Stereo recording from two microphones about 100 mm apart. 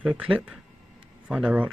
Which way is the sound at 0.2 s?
10° right (ahead or behind).